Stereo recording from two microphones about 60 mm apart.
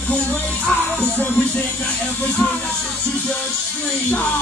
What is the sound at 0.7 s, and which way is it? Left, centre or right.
Music, left.